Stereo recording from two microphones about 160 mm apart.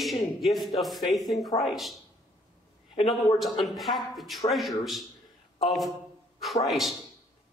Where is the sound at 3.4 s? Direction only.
Centre (ahead or behind).